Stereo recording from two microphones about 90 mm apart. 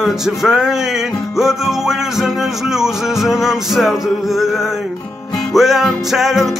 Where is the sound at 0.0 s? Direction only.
5° right (ahead or behind).